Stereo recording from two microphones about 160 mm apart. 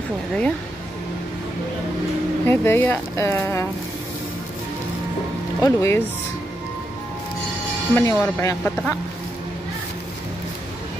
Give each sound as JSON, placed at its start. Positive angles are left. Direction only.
{"t": 2.4, "sound": "speech", "side_deg": 15}
{"t": 5.6, "sound": "speech", "side_deg": 20}
{"t": 7.9, "sound": "speech", "side_deg": 15}